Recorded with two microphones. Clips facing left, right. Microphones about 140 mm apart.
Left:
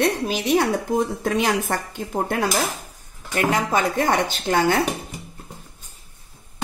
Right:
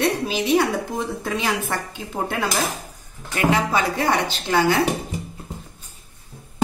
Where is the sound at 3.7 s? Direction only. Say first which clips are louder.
Left 1 dB; 45° left (ahead or behind).